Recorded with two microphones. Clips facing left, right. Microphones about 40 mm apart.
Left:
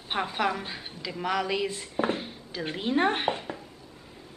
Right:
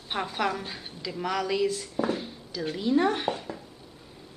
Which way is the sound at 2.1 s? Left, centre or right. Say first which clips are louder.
Right 1 dB; left.